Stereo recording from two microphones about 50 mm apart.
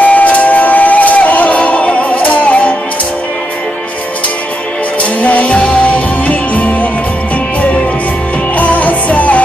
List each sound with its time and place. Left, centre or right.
0.0 s music: left
5.2 s music: left
8.5 s music: left